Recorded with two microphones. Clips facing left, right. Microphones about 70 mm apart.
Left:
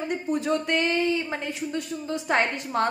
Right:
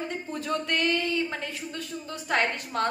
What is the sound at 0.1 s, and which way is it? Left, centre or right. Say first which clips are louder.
Speech: left 5 dB; centre.